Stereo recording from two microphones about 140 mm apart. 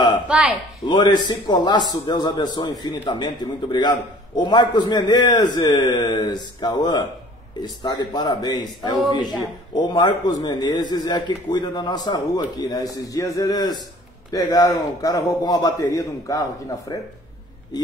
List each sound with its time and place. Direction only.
0.3 s speech: 10° right (ahead or behind)
0.8 s a man's voice: 35° left (ahead or behind)